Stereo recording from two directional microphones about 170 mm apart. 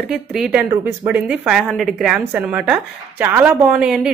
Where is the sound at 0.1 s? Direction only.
5° right (ahead or behind).